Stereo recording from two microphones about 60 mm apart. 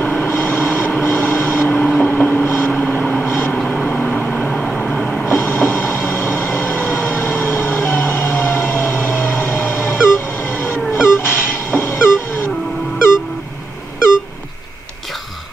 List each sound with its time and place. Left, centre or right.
0.0 s vehicle: left
2.8 s vehicle: left
3.3 s vehicle: left
3.5 s vehicle: left
5.3 s music: left
11.7 s a sound: left